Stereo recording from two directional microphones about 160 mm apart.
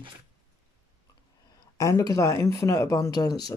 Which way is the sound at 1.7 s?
20° left (ahead or behind).